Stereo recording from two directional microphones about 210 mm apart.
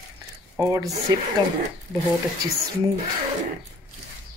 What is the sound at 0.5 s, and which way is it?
Speech, 15° right (ahead or behind).